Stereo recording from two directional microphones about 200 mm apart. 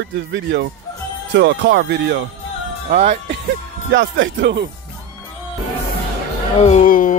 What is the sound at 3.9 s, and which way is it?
Speech, 70° right (ahead or behind).